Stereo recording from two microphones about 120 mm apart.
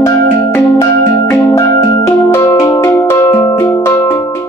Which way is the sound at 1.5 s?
30° left (ahead or behind).